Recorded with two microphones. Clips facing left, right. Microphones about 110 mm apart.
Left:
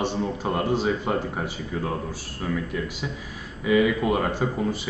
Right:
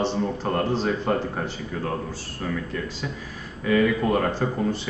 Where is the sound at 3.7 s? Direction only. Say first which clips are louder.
Even; 10° left (ahead or behind).